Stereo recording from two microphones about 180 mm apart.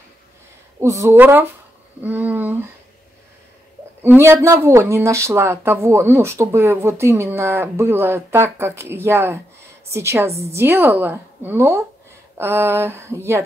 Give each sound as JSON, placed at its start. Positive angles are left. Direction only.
{"t": 0.7, "sound": "speech", "side_deg": -15}
{"t": 4.0, "sound": "speech", "side_deg": -10}